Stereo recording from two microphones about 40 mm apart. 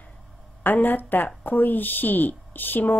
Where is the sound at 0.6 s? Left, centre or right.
Left.